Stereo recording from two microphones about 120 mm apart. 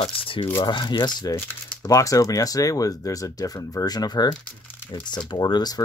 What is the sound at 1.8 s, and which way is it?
Speech, 30° left (ahead or behind).